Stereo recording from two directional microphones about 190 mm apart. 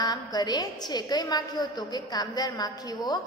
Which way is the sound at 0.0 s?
20° left (ahead or behind).